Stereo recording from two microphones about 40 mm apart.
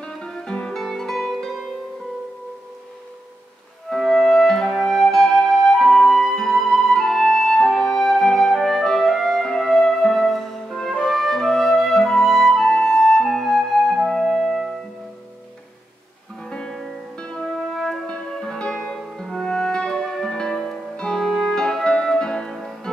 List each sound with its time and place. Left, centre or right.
0.3 s guitar: centre
0.7 s music: centre
3.9 s music: centre
4.7 s flute: centre
7.1 s music: centre
11.1 s flute: centre
12.7 s flute: centre
13.3 s music: centre
16.4 s music: centre
17.7 s music: centre
22.5 s music: centre